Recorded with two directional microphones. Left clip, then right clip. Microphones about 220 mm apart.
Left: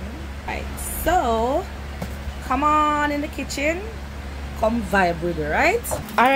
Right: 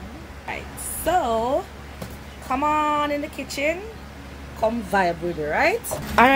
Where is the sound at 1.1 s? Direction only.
15° right (ahead or behind).